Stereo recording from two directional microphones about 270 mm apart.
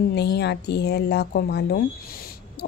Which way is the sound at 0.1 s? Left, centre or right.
Left.